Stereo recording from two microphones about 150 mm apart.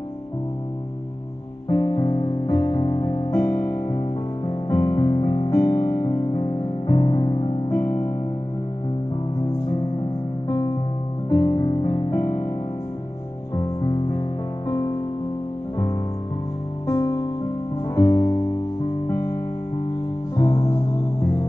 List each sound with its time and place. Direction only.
1.7 s music: 25° left (ahead or behind)
5.7 s music: 40° left (ahead or behind)
5.9 s music: 25° left (ahead or behind)
7.7 s music: 20° left (ahead or behind)
9.7 s music: 30° left (ahead or behind)
11.2 s music: 20° left (ahead or behind)
13.6 s music: 25° left (ahead or behind)
16.8 s music: 20° left (ahead or behind)
20.3 s music: 25° left (ahead or behind)